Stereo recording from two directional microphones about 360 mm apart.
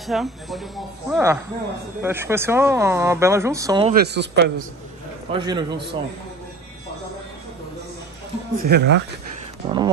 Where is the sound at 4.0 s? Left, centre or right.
Right.